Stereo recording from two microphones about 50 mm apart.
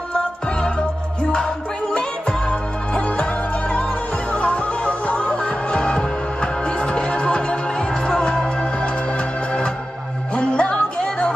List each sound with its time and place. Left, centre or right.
0.1 s music: centre